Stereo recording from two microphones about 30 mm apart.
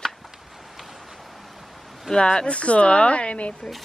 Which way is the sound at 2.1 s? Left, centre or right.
Left.